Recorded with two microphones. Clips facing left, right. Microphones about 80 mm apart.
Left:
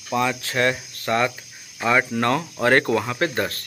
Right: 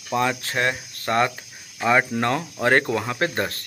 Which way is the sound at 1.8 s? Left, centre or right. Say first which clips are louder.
Even; centre.